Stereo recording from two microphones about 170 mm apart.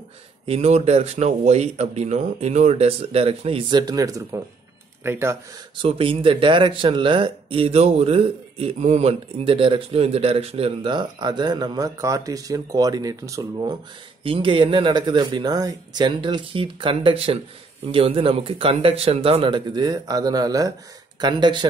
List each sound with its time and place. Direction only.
0.5 s speech: 40° right (ahead or behind); by 5.4 s 15° right (ahead or behind)
5.8 s speech: 30° right (ahead or behind)